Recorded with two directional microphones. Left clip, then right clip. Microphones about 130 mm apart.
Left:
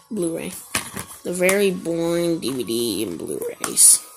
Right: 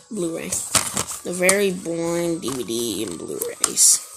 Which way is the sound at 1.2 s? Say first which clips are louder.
Left 1 dB; 35° left (ahead or behind).